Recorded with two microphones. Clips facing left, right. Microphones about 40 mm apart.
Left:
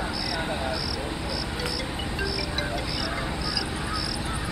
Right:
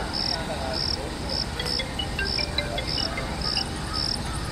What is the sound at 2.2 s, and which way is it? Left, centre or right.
Music, left.